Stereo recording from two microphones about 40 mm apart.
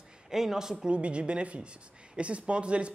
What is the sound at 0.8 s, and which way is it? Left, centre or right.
Speech, right.